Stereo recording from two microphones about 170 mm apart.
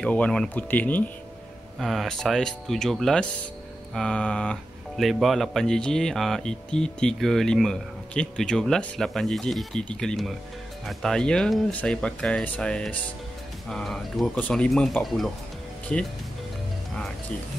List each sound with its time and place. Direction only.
0.0 s speech: 5° left (ahead or behind)